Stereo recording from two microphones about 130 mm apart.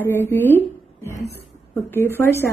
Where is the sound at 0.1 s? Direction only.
15° left (ahead or behind).